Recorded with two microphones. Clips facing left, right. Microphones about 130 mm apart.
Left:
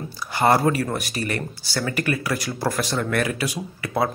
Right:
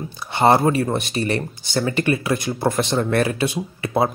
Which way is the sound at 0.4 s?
25° right (ahead or behind).